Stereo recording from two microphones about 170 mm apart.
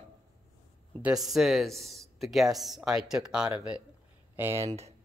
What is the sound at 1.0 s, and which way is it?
Speech, 5° right (ahead or behind).